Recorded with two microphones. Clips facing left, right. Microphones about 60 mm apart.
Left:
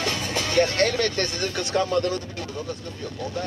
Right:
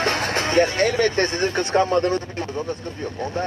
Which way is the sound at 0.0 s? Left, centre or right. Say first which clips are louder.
Right 5 dB; right.